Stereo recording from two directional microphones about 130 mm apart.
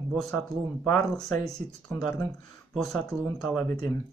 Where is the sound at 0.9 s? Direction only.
5° left (ahead or behind).